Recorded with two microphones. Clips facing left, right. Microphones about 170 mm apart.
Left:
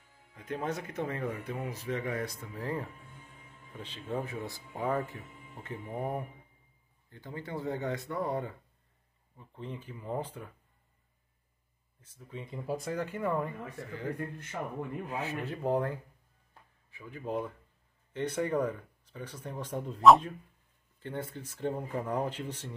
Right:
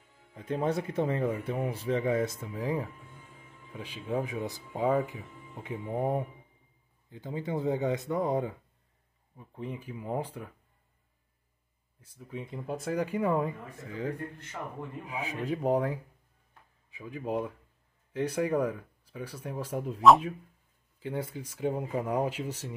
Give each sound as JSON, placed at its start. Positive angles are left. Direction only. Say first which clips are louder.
{"t": 0.3, "sound": "speech", "louder": "right 5 dB", "side_deg": -30}
{"t": 12.0, "sound": "speech", "louder": "right 4 dB", "side_deg": -10}
{"t": 12.9, "sound": "speech", "louder": "right 6 dB", "side_deg": -15}
{"t": 15.0, "sound": "speech", "louder": "right 2 dB", "side_deg": -10}